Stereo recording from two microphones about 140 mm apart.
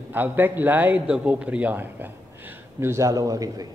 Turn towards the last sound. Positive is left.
turn(degrees=-25)  # may be behind; listen again after turning